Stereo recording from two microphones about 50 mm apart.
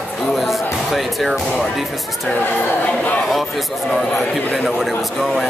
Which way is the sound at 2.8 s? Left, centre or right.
Left.